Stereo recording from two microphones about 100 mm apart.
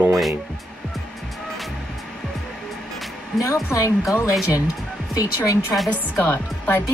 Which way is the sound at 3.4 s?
35° left (ahead or behind).